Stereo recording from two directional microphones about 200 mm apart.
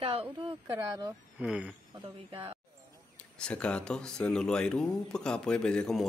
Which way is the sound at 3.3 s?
5° left (ahead or behind).